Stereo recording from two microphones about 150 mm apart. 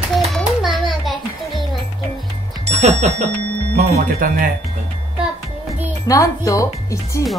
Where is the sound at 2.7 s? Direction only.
45° right (ahead or behind).